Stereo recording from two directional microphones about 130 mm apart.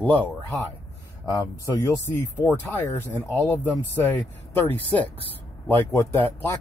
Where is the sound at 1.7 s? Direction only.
20° left (ahead or behind).